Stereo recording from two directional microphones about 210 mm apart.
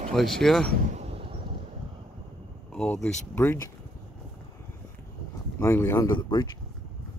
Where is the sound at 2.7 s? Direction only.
5° left (ahead or behind).